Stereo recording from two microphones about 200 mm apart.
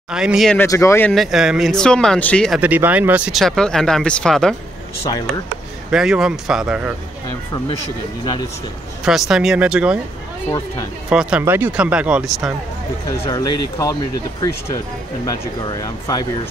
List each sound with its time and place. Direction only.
0.1 s speech: 5° right (ahead or behind)
0.6 s speech: 15° left (ahead or behind)
1.1 s speech: centre (ahead or behind)
5.9 s speech: 5° right (ahead or behind)
9.0 s speech: centre (ahead or behind)
11.1 s speech: 5° right (ahead or behind)
13.3 s speech: 20° left (ahead or behind)
15.2 s speech: 20° left (ahead or behind)